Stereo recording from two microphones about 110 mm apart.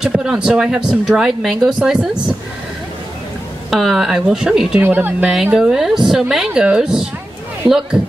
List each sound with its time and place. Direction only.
0.0 s speech: 5° right (ahead or behind)
3.7 s speech: 5° right (ahead or behind)
4.8 s speech: 15° right (ahead or behind)
5.3 s speech: 5° right (ahead or behind)